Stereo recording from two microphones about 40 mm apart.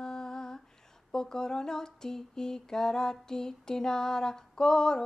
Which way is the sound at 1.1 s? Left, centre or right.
Centre.